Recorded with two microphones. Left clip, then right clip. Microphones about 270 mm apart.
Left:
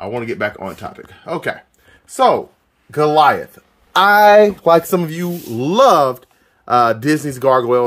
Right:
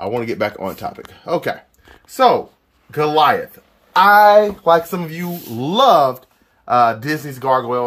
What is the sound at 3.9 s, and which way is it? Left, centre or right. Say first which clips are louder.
Speech: even; left.